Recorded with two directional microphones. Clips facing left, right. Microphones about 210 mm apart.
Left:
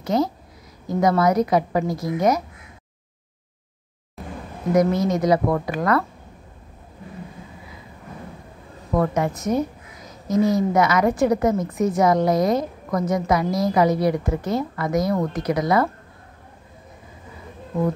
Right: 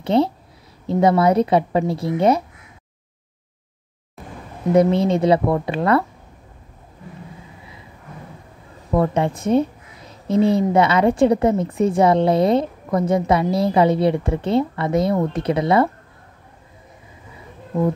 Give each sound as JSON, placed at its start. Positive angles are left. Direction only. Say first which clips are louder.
{"t": 0.0, "sound": "a woman's voice", "louder": "right 4 dB", "side_deg": -30}
{"t": 4.2, "sound": "a sound", "louder": "left 3 dB", "side_deg": 0}
{"t": 4.7, "sound": "a woman's voice", "louder": "right 3 dB", "side_deg": -30}
{"t": 8.9, "sound": "a woman's voice", "louder": "right 2 dB", "side_deg": -30}